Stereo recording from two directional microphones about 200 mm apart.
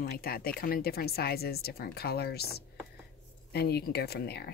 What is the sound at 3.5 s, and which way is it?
Speech, 55° left (ahead or behind).